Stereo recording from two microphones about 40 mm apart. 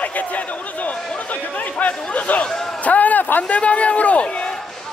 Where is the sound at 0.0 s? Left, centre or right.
Left.